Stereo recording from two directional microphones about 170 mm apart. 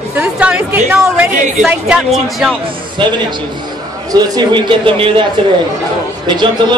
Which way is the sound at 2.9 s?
25° right (ahead or behind).